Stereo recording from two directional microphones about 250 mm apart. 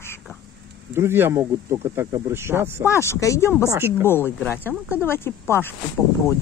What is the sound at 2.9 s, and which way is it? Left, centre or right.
Speech, centre.